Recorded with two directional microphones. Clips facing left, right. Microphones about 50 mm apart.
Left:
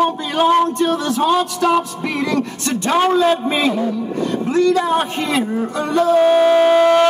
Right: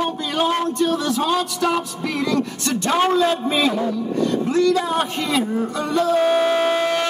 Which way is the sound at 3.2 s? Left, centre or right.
Left.